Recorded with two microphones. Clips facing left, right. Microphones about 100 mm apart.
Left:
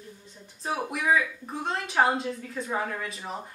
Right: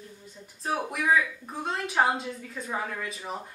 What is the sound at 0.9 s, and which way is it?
A woman's voice, centre (ahead or behind).